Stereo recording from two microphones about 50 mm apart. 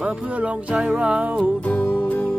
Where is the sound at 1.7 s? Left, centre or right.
Left.